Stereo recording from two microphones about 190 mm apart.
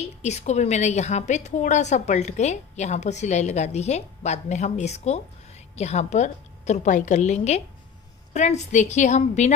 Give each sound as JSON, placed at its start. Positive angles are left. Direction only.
{"t": 0.0, "sound": "a woman's voice", "side_deg": 35}